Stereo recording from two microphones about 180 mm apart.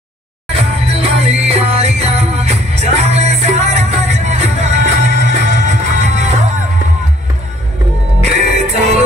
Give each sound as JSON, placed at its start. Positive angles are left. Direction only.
{"t": 0.5, "sound": "music", "side_deg": -35}
{"t": 8.2, "sound": "music", "side_deg": -35}